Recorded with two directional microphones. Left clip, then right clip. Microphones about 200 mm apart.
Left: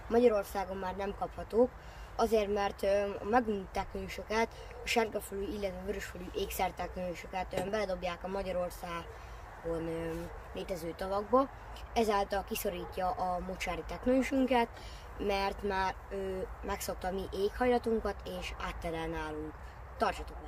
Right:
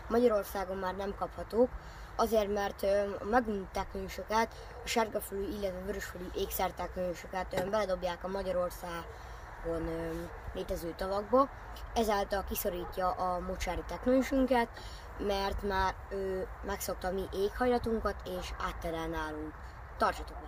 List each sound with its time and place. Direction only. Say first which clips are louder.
0.1 s speech: left 1 dB; 5° left (ahead or behind)
10.5 s speech: right 1 dB; 5° left (ahead or behind)